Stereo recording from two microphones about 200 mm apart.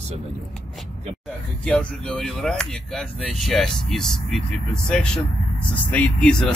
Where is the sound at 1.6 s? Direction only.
5° left (ahead or behind).